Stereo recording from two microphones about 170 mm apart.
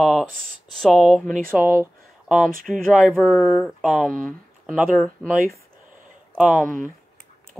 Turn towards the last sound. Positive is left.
turn(degrees=0)  # may be behind; listen again after turning